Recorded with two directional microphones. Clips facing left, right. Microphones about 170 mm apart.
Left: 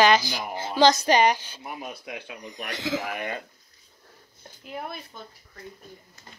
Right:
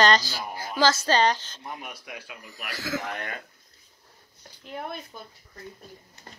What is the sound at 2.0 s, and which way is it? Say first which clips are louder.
Speech: left 4 dB; 25° left (ahead or behind).